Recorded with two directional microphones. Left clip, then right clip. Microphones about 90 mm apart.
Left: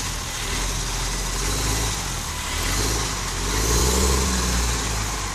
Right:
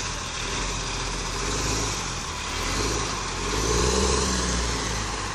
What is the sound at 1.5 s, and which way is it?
Vehicle, centre (ahead or behind).